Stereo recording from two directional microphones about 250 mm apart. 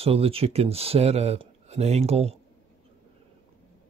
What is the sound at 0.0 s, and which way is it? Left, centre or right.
Speech, right.